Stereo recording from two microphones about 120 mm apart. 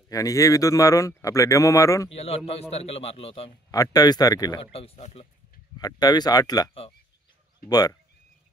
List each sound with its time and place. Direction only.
0.1 s speech: 30° left (ahead or behind)
2.1 s speech: 55° left (ahead or behind)
3.7 s speech: 30° left (ahead or behind)
4.7 s speech: 60° left (ahead or behind)
5.8 s speech: 35° left (ahead or behind)
7.7 s speech: 30° left (ahead or behind)